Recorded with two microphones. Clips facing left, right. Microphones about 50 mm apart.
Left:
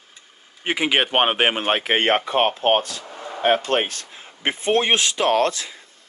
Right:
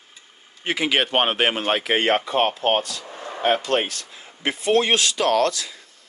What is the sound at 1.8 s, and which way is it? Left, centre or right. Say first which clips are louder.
Speech: left 1 dB; left.